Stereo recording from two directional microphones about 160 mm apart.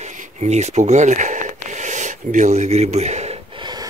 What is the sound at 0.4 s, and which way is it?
Speech, 45° right (ahead or behind).